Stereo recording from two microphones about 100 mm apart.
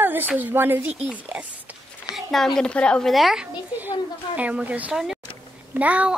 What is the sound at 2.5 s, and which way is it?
Speech, 10° left (ahead or behind).